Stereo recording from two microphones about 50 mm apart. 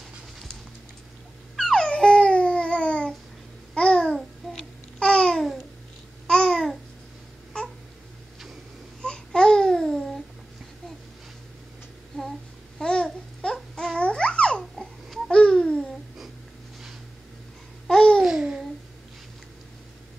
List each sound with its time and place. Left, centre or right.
1.6 s dog: centre
3.7 s babbling: centre
7.5 s babbling: centre
9.0 s babbling: centre
12.2 s a sound: centre
12.8 s babbling: centre
14.6 s a sound: centre
15.2 s babbling: centre
17.8 s babbling: centre
18.2 s babbling: centre